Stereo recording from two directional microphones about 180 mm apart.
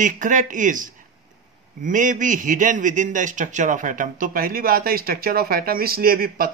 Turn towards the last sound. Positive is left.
turn(degrees=-55)  # may be behind; listen again after turning